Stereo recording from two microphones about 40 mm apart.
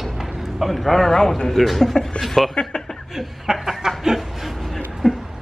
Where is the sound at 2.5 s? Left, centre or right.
Left.